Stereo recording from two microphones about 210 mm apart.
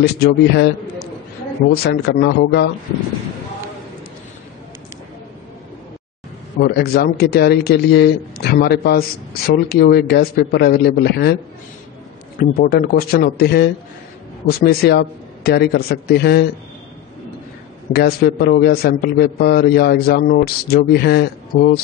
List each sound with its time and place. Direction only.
0.0 s a man's voice: 50° left (ahead or behind)
6.6 s a man's voice: 50° left (ahead or behind)
12.4 s a man's voice: 45° left (ahead or behind)
17.9 s a man's voice: 45° left (ahead or behind)